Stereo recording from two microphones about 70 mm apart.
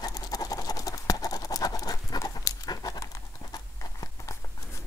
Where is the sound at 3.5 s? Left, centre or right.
Left.